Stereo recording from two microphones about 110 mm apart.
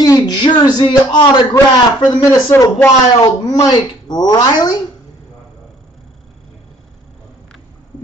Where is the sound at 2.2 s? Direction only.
25° left (ahead or behind).